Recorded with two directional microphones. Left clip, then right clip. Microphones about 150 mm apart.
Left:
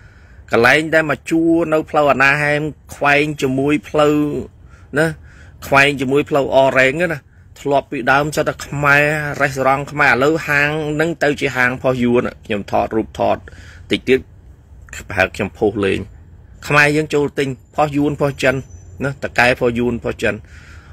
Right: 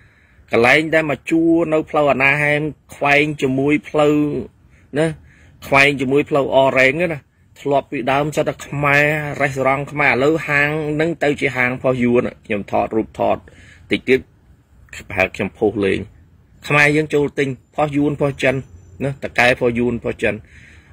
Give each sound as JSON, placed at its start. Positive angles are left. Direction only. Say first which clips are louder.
{"t": 0.5, "sound": "a man's voice", "louder": "left 1 dB", "side_deg": -15}
{"t": 5.6, "sound": "a man's voice", "louder": "left 1 dB", "side_deg": -15}
{"t": 12.2, "sound": "a man's voice", "louder": "even", "side_deg": -15}
{"t": 15.2, "sound": "a man's voice", "louder": "left 1 dB", "side_deg": -5}